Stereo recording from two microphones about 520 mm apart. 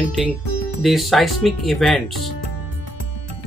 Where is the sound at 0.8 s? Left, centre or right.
Centre.